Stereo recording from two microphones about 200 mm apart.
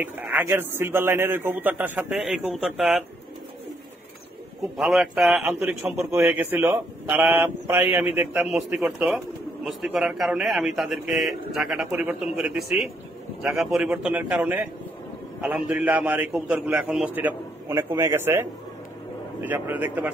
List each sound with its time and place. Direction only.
0.0 s a man's voice: 10° right (ahead or behind)
4.7 s a man's voice: 5° right (ahead or behind)